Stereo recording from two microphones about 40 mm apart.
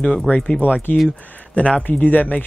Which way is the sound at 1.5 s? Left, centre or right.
Left.